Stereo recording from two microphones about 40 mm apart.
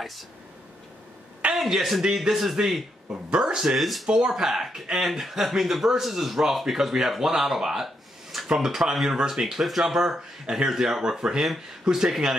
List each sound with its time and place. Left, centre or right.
1.4 s a sound: right
2.0 s speech: centre
3.1 s speech: right
3.7 s speech: centre
4.1 s speech: centre